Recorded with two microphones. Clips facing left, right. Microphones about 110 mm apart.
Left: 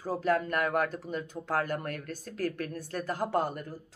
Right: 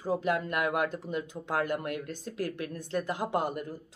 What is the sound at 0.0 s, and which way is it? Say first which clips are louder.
Speech: left 1 dB; 15° right (ahead or behind).